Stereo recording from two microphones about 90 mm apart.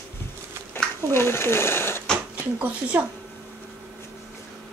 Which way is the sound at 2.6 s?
15° right (ahead or behind).